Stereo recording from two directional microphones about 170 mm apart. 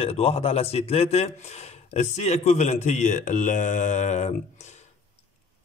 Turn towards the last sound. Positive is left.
turn(degrees=45)  # may be behind; listen again after turning